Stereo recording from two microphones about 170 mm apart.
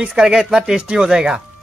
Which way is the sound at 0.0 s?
5° right (ahead or behind).